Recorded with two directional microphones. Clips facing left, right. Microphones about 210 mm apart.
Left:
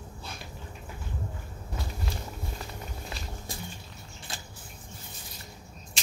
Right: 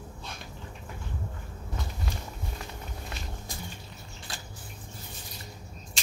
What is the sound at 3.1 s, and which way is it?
Walk, centre (ahead or behind).